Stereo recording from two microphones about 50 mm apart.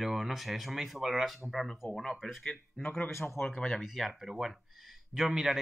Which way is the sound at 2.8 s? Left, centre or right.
Left.